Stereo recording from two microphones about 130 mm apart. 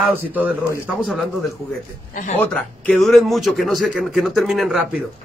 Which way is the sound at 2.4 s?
5° left (ahead or behind).